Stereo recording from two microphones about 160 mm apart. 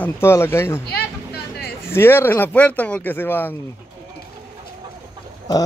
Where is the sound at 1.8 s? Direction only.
15° left (ahead or behind).